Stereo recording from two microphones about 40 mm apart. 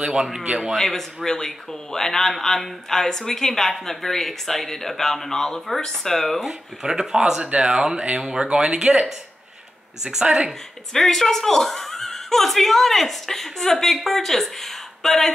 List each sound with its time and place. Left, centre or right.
0.0 s speech: centre
0.7 s speech: centre
6.4 s speech: centre
10.2 s speech: right
10.9 s speech: centre